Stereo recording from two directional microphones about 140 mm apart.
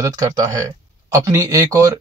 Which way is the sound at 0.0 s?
30° right (ahead or behind).